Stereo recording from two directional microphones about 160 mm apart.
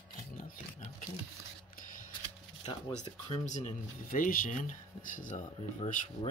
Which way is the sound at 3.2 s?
45° left (ahead or behind).